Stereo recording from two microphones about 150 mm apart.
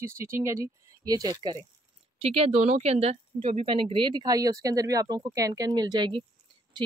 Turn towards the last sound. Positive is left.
turn(degrees=-35)  # may be behind; listen again after turning